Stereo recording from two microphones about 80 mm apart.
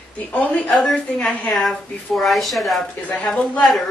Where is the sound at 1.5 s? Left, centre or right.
Centre.